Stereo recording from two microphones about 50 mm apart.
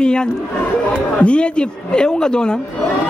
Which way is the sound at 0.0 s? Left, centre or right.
Centre.